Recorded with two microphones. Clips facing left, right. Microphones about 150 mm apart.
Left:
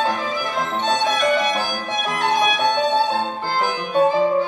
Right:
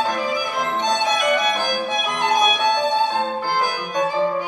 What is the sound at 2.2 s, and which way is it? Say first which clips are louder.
Music: even; 15° right (ahead or behind).